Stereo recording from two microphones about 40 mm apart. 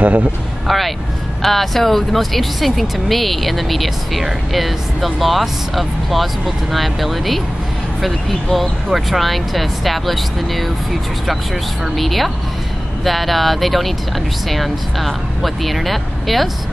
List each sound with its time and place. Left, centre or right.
0.0 s speech: right
0.7 s vehicle: centre
1.4 s speech: centre
12.0 s speech: centre